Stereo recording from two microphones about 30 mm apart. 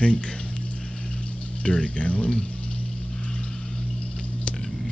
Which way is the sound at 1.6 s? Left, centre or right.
Left.